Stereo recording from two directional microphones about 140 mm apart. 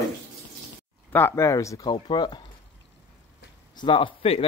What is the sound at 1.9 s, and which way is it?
Speech, 35° left (ahead or behind).